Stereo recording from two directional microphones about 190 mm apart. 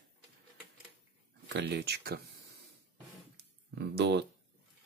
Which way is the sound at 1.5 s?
65° right (ahead or behind).